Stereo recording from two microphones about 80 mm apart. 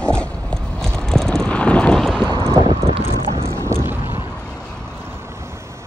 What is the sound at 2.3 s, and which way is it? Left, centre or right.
Wind, right.